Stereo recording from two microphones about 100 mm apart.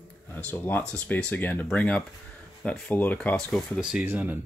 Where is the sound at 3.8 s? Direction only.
10° right (ahead or behind).